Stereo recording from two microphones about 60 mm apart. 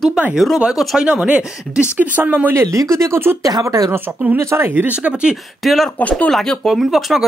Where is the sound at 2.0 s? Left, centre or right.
Right.